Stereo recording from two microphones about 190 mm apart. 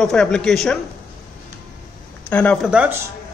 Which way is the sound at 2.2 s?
5° left (ahead or behind).